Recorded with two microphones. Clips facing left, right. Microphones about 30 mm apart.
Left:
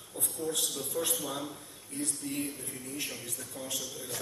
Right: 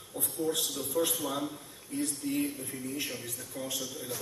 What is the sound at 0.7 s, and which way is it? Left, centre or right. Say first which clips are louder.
A man's voice: right 3 dB; centre.